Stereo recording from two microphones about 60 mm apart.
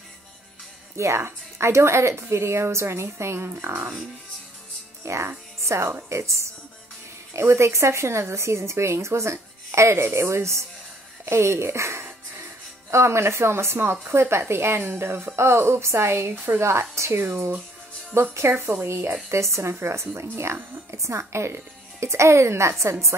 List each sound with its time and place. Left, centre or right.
0.9 s speech: right
5.0 s speech: right
11.2 s music: right
12.9 s speech: right